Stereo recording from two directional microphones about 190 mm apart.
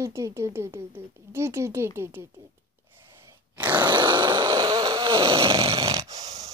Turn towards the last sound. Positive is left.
turn(degrees=-20)  # may be behind; listen again after turning